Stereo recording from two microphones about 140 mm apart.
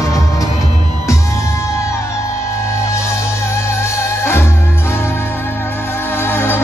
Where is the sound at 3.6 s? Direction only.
20° left (ahead or behind).